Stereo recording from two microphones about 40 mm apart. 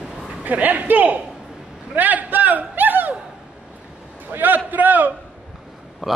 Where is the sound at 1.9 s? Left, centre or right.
Right.